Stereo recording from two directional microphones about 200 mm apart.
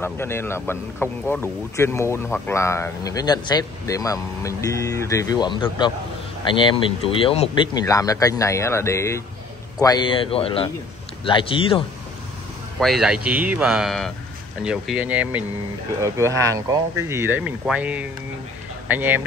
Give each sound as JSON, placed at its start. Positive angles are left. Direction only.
{"t": 0.0, "sound": "speech", "side_deg": 10}
{"t": 12.7, "sound": "speech", "side_deg": 0}